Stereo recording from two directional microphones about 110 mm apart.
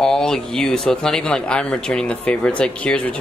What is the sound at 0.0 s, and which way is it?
Speech, 5° left (ahead or behind).